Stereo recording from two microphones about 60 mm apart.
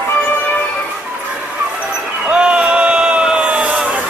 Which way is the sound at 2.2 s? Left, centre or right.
Centre.